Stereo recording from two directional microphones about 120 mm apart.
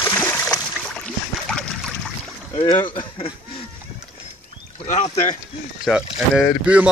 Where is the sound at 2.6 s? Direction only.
45° left (ahead or behind).